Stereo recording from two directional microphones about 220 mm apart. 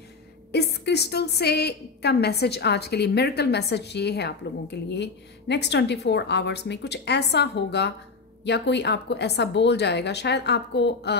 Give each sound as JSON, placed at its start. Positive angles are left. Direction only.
{"t": 0.5, "sound": "a woman's voice", "side_deg": 50}